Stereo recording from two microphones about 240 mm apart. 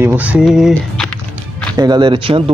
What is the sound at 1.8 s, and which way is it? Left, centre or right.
Speech, centre.